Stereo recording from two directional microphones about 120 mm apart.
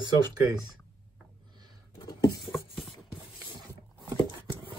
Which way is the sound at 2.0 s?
30° left (ahead or behind).